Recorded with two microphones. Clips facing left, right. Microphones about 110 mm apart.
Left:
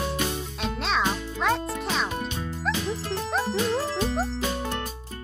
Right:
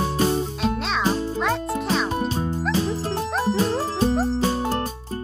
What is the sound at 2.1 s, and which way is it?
Music, 35° right (ahead or behind).